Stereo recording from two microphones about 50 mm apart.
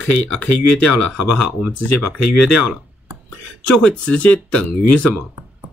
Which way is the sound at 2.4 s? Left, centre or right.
Centre.